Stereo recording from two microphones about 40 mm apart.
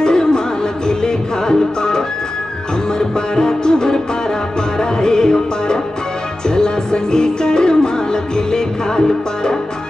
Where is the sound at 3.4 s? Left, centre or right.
Centre.